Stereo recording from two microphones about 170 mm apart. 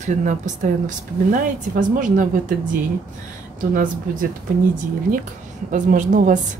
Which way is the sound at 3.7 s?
55° right (ahead or behind).